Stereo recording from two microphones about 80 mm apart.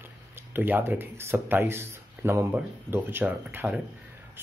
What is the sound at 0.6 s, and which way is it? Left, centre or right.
Speech, right.